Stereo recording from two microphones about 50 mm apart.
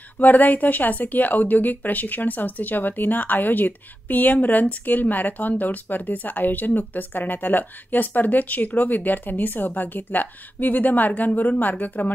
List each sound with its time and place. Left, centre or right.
0.2 s speech: left